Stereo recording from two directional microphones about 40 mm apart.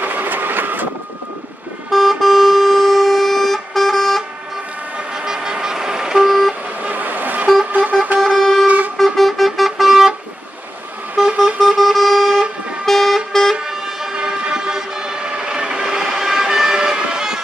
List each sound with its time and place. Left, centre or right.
0.0 s vehicle: right
1.9 s vehicle: centre
5.2 s vehicle: centre
6.8 s vehicle: right
7.7 s vehicle: right
8.2 s vehicle: centre
11.6 s vehicle: centre
13.7 s vehicle: right